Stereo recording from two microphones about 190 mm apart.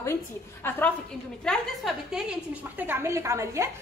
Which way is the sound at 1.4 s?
Centre (ahead or behind).